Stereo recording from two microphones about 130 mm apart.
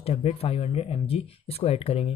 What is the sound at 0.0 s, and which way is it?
Speech, 50° left (ahead or behind).